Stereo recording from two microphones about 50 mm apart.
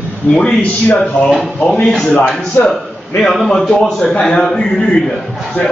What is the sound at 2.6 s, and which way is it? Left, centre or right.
A man's voice, centre.